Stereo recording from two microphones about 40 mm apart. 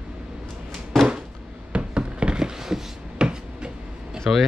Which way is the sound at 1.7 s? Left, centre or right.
Right.